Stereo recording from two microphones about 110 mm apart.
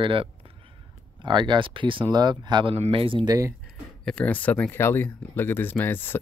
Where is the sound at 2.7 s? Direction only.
60° right (ahead or behind).